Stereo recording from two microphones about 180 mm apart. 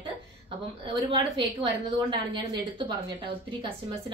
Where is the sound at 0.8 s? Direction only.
25° right (ahead or behind).